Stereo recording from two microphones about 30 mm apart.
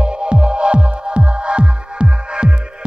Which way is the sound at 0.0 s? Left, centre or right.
Right.